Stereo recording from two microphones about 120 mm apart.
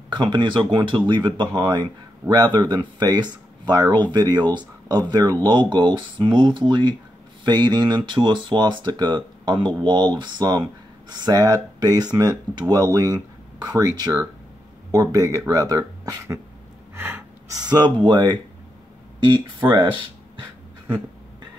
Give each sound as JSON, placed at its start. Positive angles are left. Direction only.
{"t": 0.1, "sound": "speech", "side_deg": -40}
{"t": 16.9, "sound": "gasp", "side_deg": -20}
{"t": 17.6, "sound": "speech", "side_deg": -35}
{"t": 19.6, "sound": "speech", "side_deg": -20}